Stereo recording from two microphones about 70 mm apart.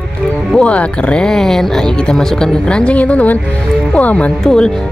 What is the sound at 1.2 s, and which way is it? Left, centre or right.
A woman's voice, centre.